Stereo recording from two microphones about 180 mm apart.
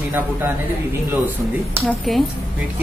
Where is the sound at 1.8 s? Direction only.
Centre (ahead or behind).